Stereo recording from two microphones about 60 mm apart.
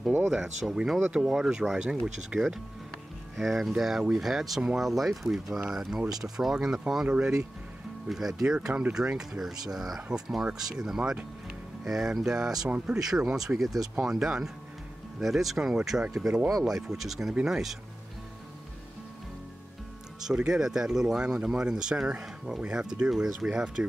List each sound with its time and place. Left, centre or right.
0.3 s speech: centre
8.1 s speech: centre
11.0 s speech: centre
11.8 s speech: centre
20.2 s speech: centre